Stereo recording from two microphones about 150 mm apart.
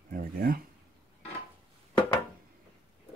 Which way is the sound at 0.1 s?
70° right (ahead or behind).